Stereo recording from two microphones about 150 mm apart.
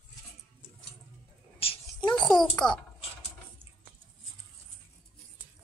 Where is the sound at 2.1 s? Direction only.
5° left (ahead or behind).